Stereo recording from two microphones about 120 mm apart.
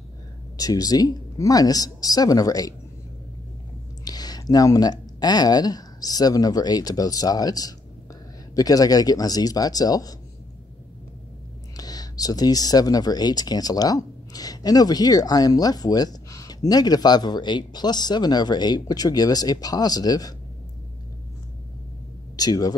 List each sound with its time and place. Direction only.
0.6 s speech: 30° left (ahead or behind)
4.0 s speech: 35° left (ahead or behind)
11.7 s speech: 30° left (ahead or behind)
22.4 s speech: 35° left (ahead or behind)